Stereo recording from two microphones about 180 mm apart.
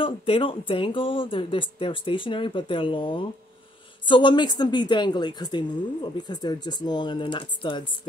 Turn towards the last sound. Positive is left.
turn(degrees=25)  # may be behind; listen again after turning